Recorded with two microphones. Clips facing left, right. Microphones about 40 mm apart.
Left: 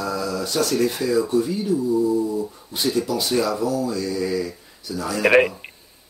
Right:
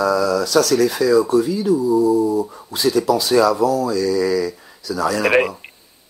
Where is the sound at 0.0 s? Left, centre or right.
Right.